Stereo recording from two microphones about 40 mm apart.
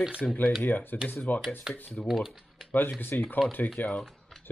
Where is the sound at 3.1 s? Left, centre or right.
Left.